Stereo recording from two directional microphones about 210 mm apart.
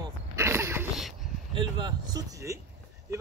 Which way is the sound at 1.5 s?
20° right (ahead or behind).